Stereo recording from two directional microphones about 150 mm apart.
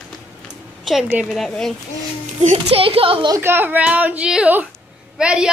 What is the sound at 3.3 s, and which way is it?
Speech, 15° right (ahead or behind).